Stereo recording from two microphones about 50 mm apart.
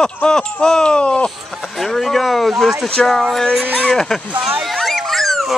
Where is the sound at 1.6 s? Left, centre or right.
Centre.